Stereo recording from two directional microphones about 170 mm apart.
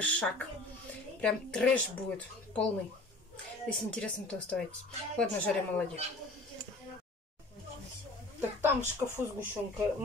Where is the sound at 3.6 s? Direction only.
5° left (ahead or behind).